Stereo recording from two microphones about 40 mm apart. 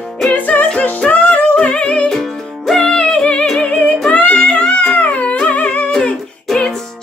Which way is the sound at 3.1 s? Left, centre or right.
Left.